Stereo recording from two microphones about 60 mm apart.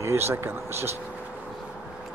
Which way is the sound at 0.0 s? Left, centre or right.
Right.